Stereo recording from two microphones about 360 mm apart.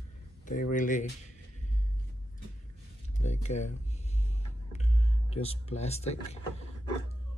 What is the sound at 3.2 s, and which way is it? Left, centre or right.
Speech, centre.